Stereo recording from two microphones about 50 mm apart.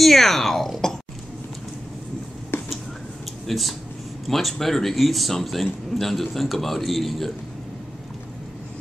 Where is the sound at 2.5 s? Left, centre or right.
Left.